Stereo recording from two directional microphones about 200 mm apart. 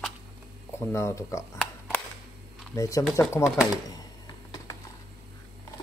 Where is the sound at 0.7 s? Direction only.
15° left (ahead or behind).